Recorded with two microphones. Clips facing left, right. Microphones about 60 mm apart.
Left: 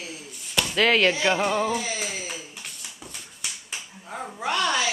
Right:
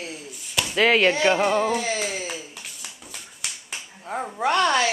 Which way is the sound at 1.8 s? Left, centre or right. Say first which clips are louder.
Right 5 dB; right.